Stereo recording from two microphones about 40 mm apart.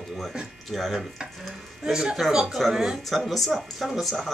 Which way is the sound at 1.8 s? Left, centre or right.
Centre.